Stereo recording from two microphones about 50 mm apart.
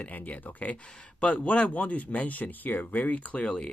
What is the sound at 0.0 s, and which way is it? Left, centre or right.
Speech, left.